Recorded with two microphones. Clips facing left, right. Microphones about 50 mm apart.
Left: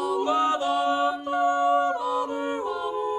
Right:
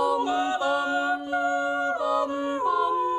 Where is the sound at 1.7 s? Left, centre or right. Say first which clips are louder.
Left 4 dB; right.